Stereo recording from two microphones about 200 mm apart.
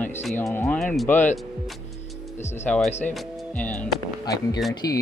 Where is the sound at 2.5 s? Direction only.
5° left (ahead or behind).